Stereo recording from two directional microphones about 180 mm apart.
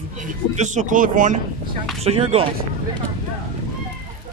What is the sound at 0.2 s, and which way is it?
Speech, 40° right (ahead or behind).